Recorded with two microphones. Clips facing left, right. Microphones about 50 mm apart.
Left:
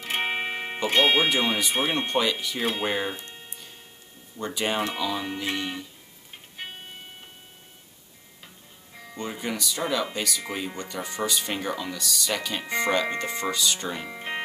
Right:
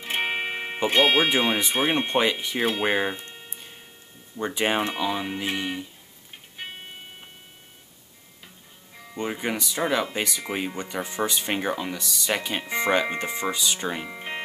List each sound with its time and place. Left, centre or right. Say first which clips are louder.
0.0 s music: right 1 dB; centre
0.7 s speech: right 2 dB; right
1.0 s speech: right 1 dB; centre
1.3 s speech: right 2 dB; centre
2.8 s music: right 3 dB; right
4.4 s speech: right 3 dB; right
9.1 s speech: right 3 dB; right
14.1 s music: left 1 dB; centre